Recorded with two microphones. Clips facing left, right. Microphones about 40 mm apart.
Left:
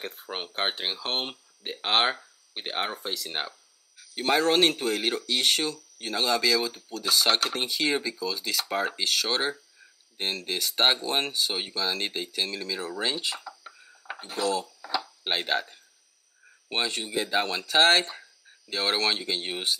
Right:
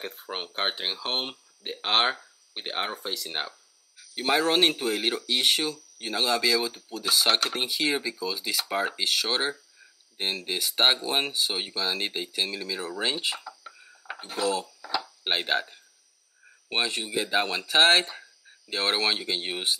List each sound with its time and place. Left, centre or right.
0.0 s speech: centre
13.4 s a sound: centre
14.2 s speech: centre